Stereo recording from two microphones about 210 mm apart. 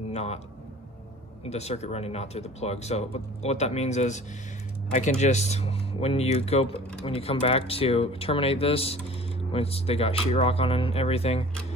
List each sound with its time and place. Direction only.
0.1 s a man's voice: 30° left (ahead or behind)
1.5 s speech: 30° left (ahead or behind)